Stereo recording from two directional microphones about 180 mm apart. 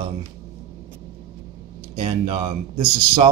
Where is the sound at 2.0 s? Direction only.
30° right (ahead or behind).